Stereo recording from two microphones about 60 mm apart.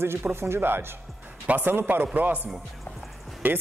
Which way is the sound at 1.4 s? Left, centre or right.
Right.